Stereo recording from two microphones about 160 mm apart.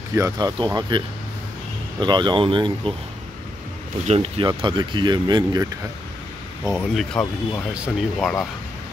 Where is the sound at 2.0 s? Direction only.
30° right (ahead or behind).